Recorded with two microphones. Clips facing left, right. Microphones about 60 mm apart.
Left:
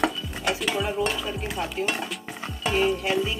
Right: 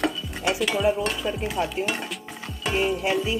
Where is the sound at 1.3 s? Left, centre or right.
Centre.